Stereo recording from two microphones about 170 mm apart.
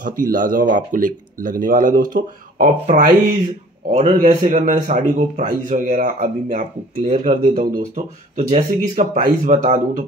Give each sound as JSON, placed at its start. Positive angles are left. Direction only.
{"t": 0.0, "sound": "speech", "side_deg": -50}